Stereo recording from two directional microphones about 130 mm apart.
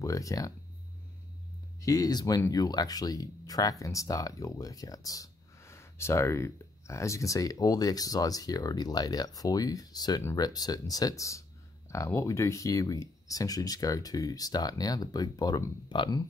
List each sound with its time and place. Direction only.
0.0 s speech: 25° left (ahead or behind)
1.8 s speech: 25° left (ahead or behind)